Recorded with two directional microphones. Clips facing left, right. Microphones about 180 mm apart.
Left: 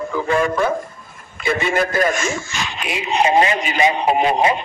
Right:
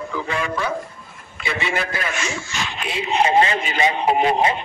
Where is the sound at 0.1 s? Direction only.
45° left (ahead or behind).